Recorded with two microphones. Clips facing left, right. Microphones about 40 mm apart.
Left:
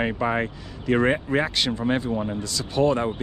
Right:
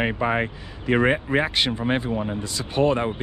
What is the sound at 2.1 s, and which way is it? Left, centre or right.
Speech, centre.